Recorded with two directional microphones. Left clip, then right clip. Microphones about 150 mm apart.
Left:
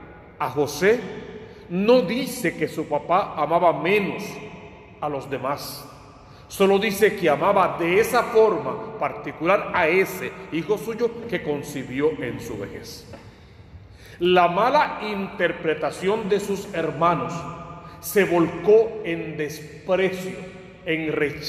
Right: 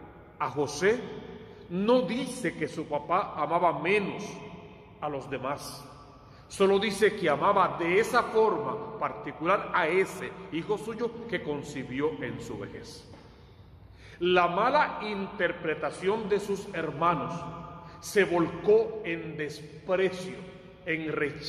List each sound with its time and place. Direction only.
0.4 s a man's voice: 25° left (ahead or behind)
1.7 s a man's voice: 15° left (ahead or behind)
14.2 s a man's voice: 25° left (ahead or behind)